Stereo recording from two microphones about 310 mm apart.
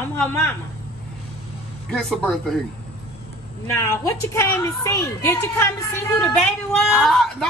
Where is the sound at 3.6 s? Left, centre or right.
Centre.